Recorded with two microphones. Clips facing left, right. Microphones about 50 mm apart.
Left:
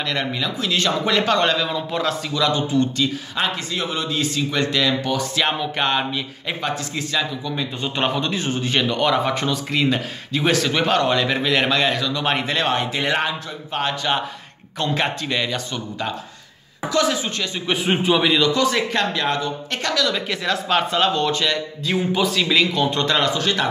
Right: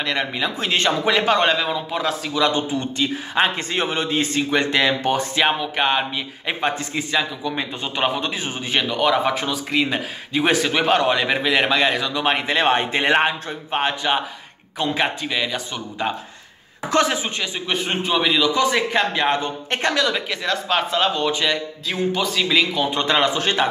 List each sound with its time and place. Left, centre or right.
0.0 s a man's voice: centre
0.4 s a man's voice: right
1.0 s a man's voice: centre
2.4 s a man's voice: right
5.3 s a man's voice: centre
6.6 s a man's voice: right; by 12.6 s centre
12.6 s a man's voice: right
14.8 s a man's voice: centre
16.9 s speech: right
17.6 s speech: centre
18.5 s a man's voice: centre
19.2 s a man's voice: right
20.2 s speech: centre
21.8 s a man's voice: centre; by 23.7 s right